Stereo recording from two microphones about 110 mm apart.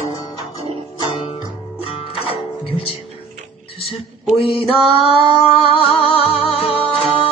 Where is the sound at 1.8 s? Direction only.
55° left (ahead or behind).